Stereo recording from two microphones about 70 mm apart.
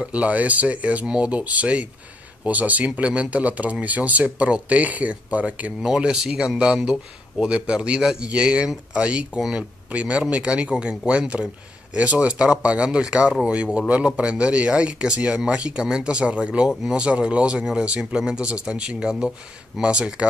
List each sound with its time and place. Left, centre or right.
0.0 s speech: centre